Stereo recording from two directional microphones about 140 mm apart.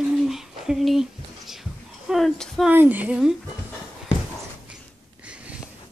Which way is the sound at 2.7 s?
10° right (ahead or behind).